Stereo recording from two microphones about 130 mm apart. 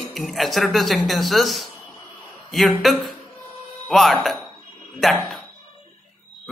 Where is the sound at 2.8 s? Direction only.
Centre (ahead or behind).